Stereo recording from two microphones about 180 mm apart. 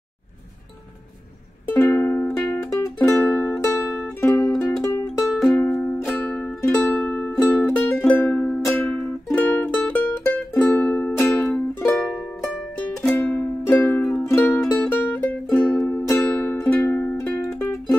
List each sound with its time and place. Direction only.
1.7 s music: 10° left (ahead or behind)
4.8 s music: 15° left (ahead or behind)
5.3 s music: 5° left (ahead or behind)